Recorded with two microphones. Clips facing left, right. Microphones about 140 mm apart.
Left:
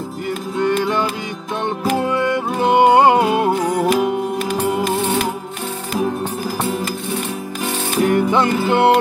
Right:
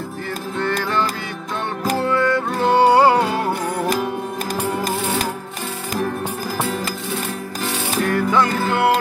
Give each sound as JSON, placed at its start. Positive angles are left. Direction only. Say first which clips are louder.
{"t": 0.6, "sound": "music", "louder": "left 4 dB", "side_deg": 15}
{"t": 8.0, "sound": "music", "louder": "left 3 dB", "side_deg": 20}